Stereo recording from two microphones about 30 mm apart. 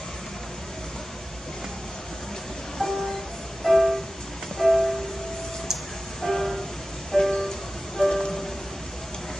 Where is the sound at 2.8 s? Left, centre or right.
Left.